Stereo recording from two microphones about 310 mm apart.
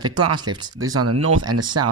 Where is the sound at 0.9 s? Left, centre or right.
Right.